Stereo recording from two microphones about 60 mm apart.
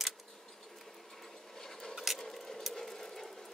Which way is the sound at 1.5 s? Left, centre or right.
Centre.